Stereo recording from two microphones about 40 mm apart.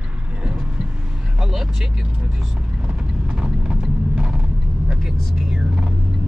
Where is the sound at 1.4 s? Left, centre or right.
Centre.